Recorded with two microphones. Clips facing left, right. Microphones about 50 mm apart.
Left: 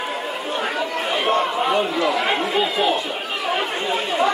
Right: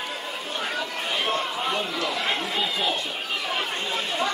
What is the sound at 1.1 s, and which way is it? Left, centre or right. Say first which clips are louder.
Speech: left 7 dB; centre.